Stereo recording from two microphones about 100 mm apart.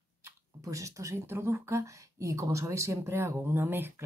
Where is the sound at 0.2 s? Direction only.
30° right (ahead or behind).